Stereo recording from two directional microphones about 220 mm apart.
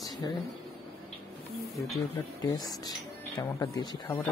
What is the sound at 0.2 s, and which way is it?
Speech, 15° left (ahead or behind).